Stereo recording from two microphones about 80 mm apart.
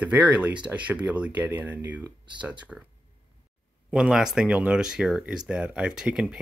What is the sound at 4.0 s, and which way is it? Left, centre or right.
Speech, centre.